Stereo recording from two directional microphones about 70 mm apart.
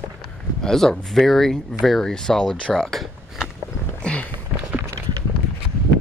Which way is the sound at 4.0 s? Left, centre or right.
Centre.